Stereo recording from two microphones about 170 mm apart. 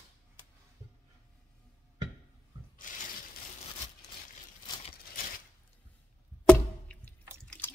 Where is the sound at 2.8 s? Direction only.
50° left (ahead or behind).